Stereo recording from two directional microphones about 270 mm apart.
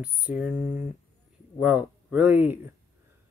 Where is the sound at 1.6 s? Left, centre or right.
Centre.